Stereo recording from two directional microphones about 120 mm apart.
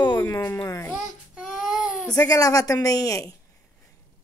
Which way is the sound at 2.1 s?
30° left (ahead or behind).